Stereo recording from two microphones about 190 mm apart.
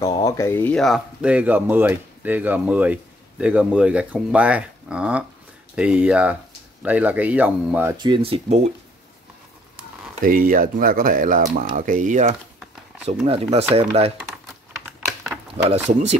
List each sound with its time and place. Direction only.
0.0 s speech: 15° left (ahead or behind); by 7.9 s 10° right (ahead or behind)
8.0 s speech: 25° right (ahead or behind)
10.2 s speech: 50° right (ahead or behind)
15.7 s speech: 35° right (ahead or behind)